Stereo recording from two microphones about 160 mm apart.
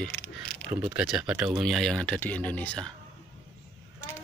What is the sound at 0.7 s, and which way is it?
Speech, 10° right (ahead or behind).